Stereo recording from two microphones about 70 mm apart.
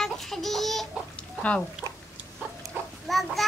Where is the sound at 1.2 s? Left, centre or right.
Centre.